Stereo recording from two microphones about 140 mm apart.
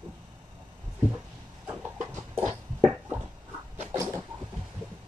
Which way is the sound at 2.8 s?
10° right (ahead or behind).